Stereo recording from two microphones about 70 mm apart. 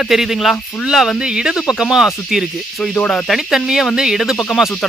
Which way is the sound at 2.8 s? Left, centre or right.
Centre.